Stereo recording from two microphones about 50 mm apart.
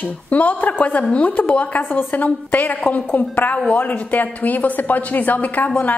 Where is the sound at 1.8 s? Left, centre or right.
Left.